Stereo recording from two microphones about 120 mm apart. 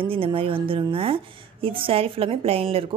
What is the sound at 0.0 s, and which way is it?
A woman's voice, 50° right (ahead or behind).